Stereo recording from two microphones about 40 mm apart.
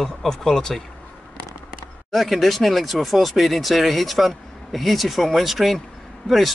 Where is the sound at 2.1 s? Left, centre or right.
Centre.